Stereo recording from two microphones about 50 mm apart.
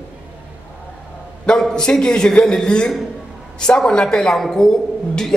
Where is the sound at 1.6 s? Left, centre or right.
Centre.